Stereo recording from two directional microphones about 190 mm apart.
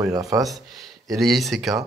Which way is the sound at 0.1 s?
20° right (ahead or behind).